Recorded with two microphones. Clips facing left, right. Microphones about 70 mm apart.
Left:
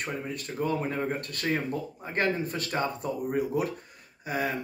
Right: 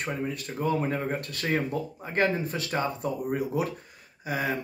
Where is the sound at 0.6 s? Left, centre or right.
Centre.